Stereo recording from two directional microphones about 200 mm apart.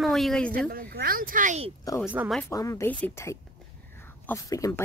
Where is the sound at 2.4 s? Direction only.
15° left (ahead or behind).